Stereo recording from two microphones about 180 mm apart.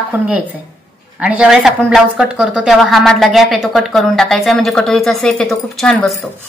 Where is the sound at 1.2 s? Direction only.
5° right (ahead or behind).